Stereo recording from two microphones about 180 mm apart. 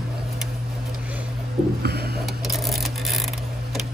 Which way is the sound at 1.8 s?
60° right (ahead or behind).